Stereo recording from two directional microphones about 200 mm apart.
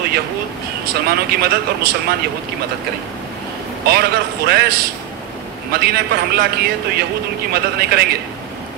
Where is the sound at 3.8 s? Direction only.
50° right (ahead or behind).